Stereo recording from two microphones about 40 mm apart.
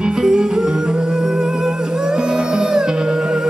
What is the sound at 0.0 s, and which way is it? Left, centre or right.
Music, centre.